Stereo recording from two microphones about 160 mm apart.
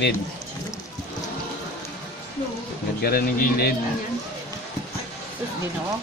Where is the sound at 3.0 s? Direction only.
65° left (ahead or behind).